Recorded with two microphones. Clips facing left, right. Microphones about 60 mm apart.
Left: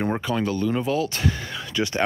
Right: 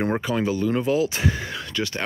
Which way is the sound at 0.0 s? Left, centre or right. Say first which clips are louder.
Right 1 dB; centre.